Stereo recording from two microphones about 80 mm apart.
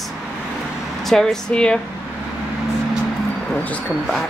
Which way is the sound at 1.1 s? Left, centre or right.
Centre.